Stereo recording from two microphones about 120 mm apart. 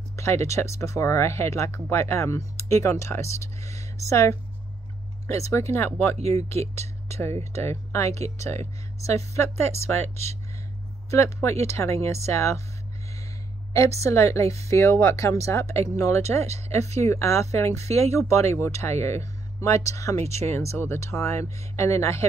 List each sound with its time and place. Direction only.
0.1 s speech: 25° left (ahead or behind)
5.5 s speech: 25° left (ahead or behind)
6.1 s speech: 60° right (ahead or behind)
7.1 s speech: 20° left (ahead or behind)
13.9 s speech: 25° left (ahead or behind)